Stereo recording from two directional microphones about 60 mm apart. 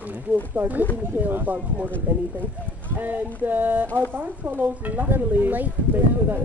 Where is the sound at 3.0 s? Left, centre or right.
Right.